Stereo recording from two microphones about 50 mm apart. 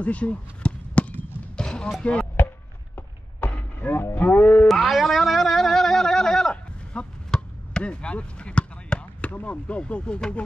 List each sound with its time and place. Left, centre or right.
0.0 s basketball bounce: left
1.6 s a sound: centre
2.0 s speech: left
3.3 s vehicle: left
3.8 s cattle: left
4.6 s music: centre
6.5 s a sound: left
7.3 s chop: left
9.3 s speech: left